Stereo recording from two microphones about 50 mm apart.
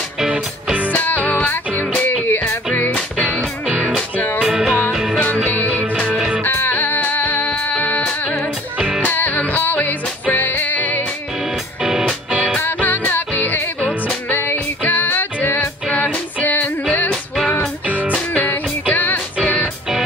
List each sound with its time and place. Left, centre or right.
0.3 s music: right
0.9 s music: left
2.2 s music: left
2.7 s music: left
3.6 s music: centre
6.4 s music: left
8.7 s music: centre
9.0 s music: left
11.8 s music: centre
12.6 s music: left
17.8 s music: right
18.3 s music: left